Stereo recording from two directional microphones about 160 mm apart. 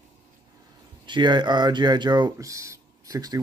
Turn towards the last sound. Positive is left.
turn(degrees=-25)  # may be behind; listen again after turning